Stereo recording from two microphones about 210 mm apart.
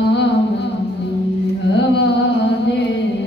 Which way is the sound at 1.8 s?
55° left (ahead or behind).